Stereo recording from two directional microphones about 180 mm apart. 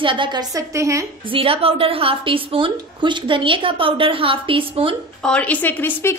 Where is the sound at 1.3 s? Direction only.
30° right (ahead or behind).